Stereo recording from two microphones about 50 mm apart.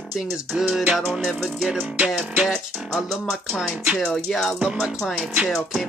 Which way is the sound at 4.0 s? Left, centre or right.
Centre.